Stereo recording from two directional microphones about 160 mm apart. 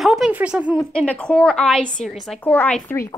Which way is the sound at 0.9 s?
5° left (ahead or behind).